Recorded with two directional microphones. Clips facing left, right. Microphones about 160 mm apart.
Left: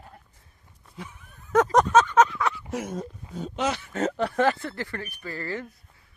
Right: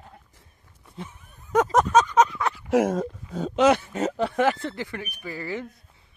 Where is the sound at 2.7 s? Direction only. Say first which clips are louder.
Right 10 dB; 90° right.